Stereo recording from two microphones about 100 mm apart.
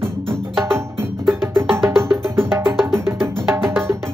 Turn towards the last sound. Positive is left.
turn(degrees=-25)  # may be behind; listen again after turning